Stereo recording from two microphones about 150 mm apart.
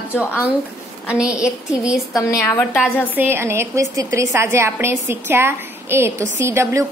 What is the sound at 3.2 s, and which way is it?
A woman's voice, 15° right (ahead or behind).